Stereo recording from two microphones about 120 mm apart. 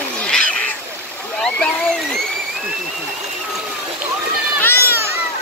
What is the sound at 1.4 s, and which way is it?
Splash, 5° left (ahead or behind).